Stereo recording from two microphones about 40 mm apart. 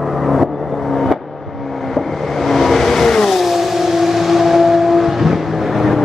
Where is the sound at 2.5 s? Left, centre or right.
Centre.